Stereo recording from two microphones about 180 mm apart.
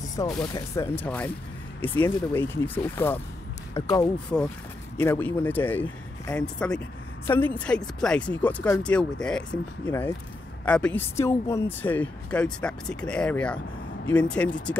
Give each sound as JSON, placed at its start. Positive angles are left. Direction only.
{"t": 0.2, "sound": "speech", "side_deg": 25}
{"t": 0.6, "sound": "speech", "side_deg": 15}